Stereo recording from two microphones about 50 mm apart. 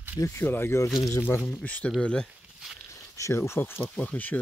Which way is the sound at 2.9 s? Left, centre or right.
Left.